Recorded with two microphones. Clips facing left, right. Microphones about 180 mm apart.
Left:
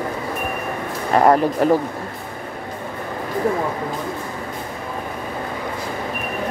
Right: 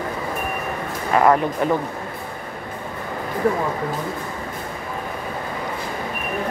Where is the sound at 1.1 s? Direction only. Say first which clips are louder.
Left 2 dB; 35° left (ahead or behind).